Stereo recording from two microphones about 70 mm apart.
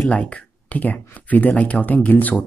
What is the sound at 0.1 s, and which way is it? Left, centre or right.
Speech, centre.